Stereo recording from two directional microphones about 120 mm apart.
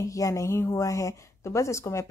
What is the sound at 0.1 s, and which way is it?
Speech, 25° left (ahead or behind).